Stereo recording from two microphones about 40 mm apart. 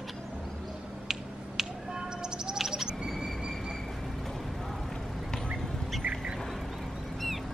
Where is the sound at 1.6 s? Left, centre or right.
Centre.